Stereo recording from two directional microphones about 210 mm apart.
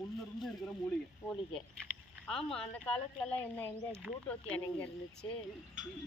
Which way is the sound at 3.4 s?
10° left (ahead or behind).